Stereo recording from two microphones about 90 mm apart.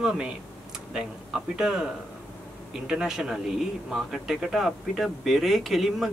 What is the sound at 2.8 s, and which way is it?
A man's voice, 5° right (ahead or behind).